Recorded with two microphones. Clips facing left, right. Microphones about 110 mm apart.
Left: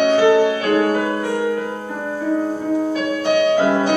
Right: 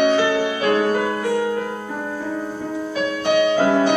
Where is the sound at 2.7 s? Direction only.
40° left (ahead or behind).